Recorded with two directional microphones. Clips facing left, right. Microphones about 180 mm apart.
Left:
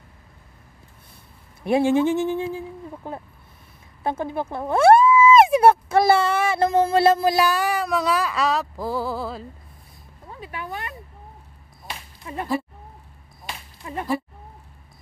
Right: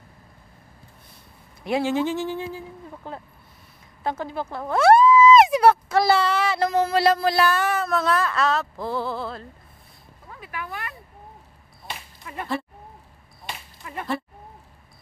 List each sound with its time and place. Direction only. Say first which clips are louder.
1.7 s speech: left 4 dB; 25° left (ahead or behind); by 9.5 s 5° left (ahead or behind)
10.2 s a sound: left 2 dB; 25° left (ahead or behind)
12.2 s speech: left 4 dB; 25° left (ahead or behind)
13.8 s speech: left 4 dB; 25° left (ahead or behind)